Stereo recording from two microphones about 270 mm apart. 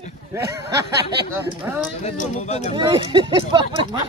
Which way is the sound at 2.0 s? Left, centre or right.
Left.